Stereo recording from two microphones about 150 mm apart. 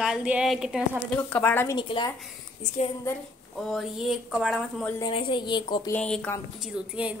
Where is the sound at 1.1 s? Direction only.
10° left (ahead or behind).